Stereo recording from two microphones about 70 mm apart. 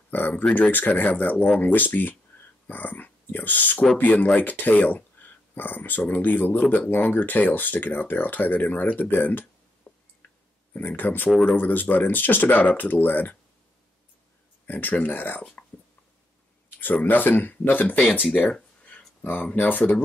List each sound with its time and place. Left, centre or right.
0.1 s speech: left
14.7 s speech: left
16.8 s speech: left
18.5 s a sound: centre
19.2 s speech: left